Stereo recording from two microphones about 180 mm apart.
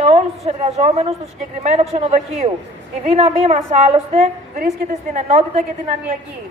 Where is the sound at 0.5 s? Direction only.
35° right (ahead or behind).